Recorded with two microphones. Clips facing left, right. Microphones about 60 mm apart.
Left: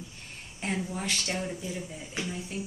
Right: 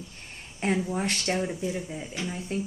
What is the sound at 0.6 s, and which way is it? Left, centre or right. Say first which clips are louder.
Speech: right 6 dB; right.